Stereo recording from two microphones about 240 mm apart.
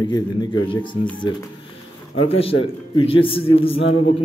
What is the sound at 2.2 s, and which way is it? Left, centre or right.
A man's voice, left.